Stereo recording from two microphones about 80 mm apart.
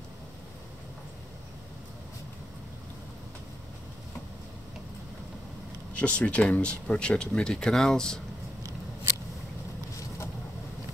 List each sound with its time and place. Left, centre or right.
5.9 s speech: centre
9.9 s vehicle: left